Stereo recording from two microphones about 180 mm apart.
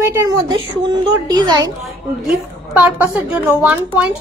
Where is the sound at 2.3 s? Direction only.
10° right (ahead or behind).